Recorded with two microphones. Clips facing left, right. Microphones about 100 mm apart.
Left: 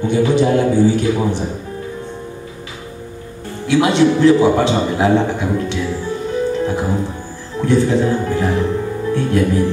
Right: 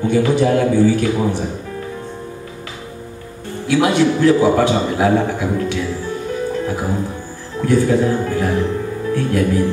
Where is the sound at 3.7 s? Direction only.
25° left (ahead or behind).